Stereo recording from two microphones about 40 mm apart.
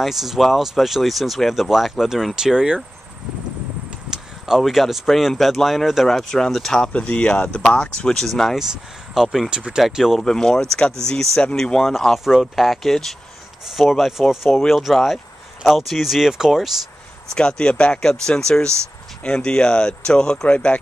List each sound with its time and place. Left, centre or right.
0.0 s speech: centre
2.3 s speech: centre
4.1 s a sound: centre
5.4 s speech: centre
6.9 s speech: left
8.2 s speech: centre
8.5 s speech: centre
9.8 s speech: centre
10.2 s speech: centre
12.0 s speech: centre
17.3 s speech: left